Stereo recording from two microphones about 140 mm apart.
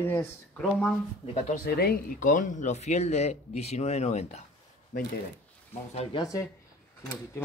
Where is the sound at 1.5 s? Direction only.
90° left; by 4.4 s 50° left (ahead or behind).